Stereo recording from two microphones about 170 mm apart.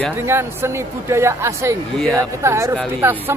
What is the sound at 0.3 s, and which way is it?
Speech, 15° right (ahead or behind).